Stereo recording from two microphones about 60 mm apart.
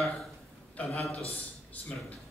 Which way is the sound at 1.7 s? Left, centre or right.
Left.